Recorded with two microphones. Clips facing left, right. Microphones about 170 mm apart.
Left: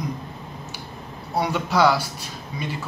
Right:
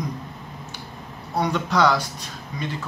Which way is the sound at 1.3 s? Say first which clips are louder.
Even; 10° left (ahead or behind).